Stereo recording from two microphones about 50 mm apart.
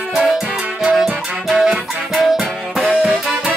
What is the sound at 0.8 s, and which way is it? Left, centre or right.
Music, centre.